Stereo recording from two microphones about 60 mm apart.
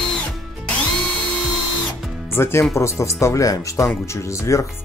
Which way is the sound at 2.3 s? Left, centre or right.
Left.